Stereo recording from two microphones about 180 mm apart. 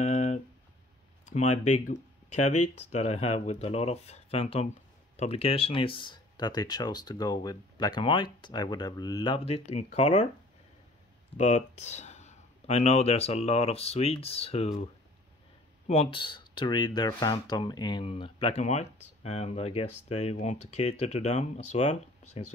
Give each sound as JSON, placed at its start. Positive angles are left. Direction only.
{"t": 0.0, "sound": "a sound", "side_deg": 40}
{"t": 1.2, "sound": "speech", "side_deg": 40}
{"t": 11.3, "sound": "speech", "side_deg": 40}
{"t": 15.9, "sound": "speech", "side_deg": 30}